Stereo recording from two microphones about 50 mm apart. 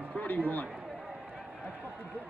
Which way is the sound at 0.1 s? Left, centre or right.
Left.